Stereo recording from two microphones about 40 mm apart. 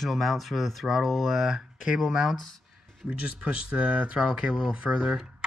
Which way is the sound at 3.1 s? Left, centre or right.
Right.